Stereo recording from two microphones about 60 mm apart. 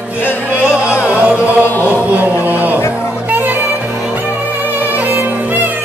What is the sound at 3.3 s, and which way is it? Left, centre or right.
Music, right.